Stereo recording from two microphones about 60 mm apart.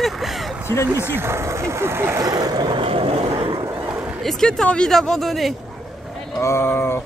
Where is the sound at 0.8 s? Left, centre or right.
Right.